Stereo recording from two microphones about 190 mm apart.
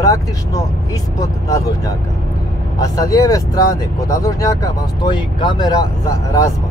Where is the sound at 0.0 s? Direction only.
20° left (ahead or behind).